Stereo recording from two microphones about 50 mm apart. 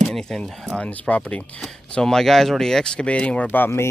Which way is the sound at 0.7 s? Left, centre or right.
Left.